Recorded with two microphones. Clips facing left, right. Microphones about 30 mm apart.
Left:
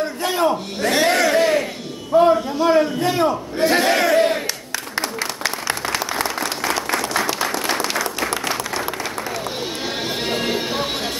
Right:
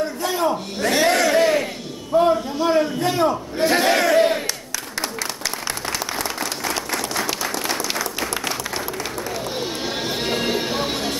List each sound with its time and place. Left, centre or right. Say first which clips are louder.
0.0 s a sound: left 2 dB; left
0.8 s a sound: left 1 dB; centre
2.1 s a man's voice: left 3 dB; centre
5.4 s applause: left 4 dB; left
7.4 s applause: left 3 dB; left
9.6 s sheep: even; centre
10.3 s music: even; centre